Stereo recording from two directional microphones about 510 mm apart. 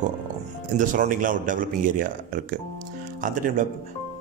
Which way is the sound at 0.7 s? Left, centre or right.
Centre.